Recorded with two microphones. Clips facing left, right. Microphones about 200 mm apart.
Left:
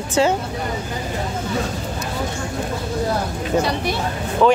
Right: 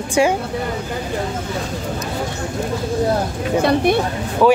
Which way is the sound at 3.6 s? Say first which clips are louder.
Right 6 dB; 55° right (ahead or behind).